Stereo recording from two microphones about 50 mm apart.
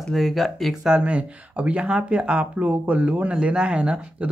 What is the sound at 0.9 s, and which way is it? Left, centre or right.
Speech, right.